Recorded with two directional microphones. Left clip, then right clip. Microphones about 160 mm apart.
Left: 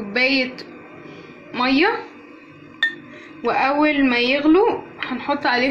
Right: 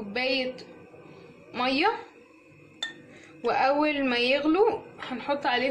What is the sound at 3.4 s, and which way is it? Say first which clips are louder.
A woman's voice: left 6 dB; 20° right (ahead or behind).